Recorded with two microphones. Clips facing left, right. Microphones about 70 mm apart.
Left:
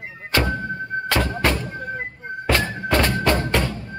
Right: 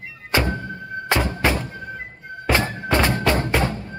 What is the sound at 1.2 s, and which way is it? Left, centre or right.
Music, centre.